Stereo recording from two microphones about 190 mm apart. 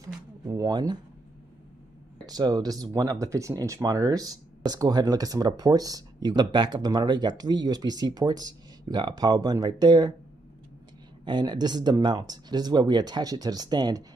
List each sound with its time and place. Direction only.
0.5 s speech: 20° right (ahead or behind)
2.2 s speech: 20° right (ahead or behind)
11.2 s speech: 25° right (ahead or behind)